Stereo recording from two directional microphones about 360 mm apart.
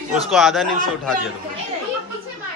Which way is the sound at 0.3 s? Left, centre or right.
Centre.